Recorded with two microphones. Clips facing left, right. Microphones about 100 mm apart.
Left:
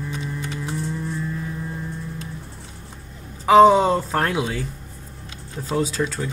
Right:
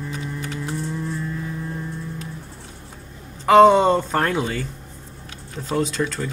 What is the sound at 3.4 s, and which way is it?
Speech, 5° left (ahead or behind).